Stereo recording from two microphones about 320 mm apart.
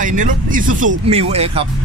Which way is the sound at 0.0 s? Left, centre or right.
Right.